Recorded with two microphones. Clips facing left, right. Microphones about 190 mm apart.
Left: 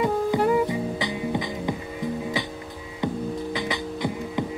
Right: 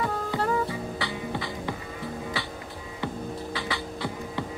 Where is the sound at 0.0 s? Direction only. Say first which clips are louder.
Left 7 dB; 15° left (ahead or behind).